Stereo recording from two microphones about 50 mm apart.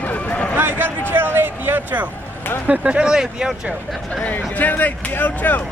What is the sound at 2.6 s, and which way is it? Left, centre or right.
Speech, centre.